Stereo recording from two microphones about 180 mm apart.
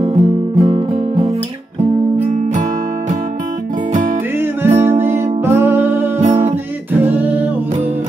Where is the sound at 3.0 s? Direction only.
45° right (ahead or behind).